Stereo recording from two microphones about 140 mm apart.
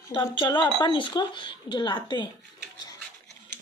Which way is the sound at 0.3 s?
35° left (ahead or behind).